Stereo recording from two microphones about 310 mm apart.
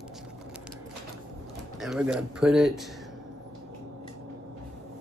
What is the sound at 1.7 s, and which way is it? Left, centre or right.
Speech, centre.